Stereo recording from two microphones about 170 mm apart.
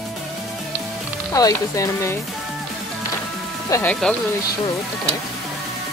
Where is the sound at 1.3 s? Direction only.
20° left (ahead or behind).